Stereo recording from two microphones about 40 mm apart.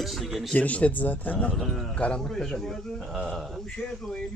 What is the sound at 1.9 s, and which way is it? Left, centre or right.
Speech, left.